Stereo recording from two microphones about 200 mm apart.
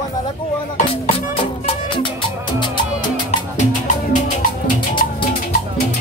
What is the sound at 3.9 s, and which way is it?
Music, 40° left (ahead or behind).